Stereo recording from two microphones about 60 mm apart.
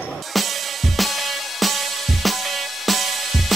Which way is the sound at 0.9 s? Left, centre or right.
Centre.